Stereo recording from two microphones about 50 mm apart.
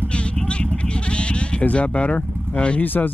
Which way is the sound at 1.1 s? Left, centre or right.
Left.